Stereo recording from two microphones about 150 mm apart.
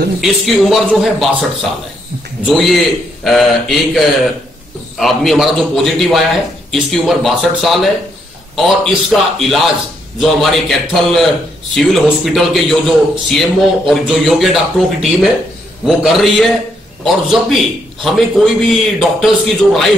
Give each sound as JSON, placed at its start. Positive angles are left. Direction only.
{"t": 0.2, "sound": "a man's voice", "side_deg": 0}